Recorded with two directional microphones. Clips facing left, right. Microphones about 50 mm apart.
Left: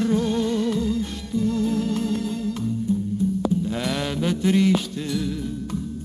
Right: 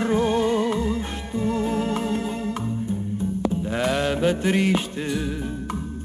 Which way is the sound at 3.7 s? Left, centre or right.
Right.